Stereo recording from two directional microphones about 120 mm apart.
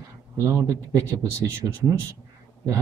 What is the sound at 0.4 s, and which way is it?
Speech, 30° right (ahead or behind).